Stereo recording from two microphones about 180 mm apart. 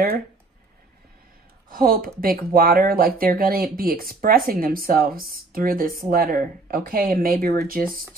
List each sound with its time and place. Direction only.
1.7 s speech: 55° right (ahead or behind)